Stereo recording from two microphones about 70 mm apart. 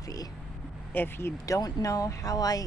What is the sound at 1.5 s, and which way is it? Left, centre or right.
Speech, left.